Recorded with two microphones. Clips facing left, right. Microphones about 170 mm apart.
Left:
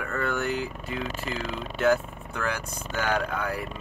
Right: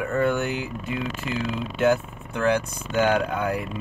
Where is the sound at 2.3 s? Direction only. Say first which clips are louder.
Right 9 dB; 25° right (ahead or behind).